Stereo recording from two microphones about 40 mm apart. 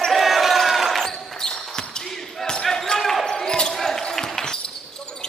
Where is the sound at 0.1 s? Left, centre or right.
Centre.